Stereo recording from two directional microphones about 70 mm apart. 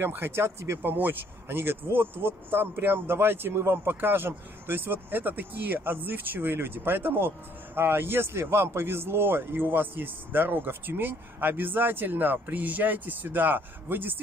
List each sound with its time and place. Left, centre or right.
0.0 s speech: right